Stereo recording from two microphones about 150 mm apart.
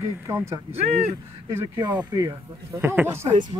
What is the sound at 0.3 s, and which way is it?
Speech, 15° right (ahead or behind).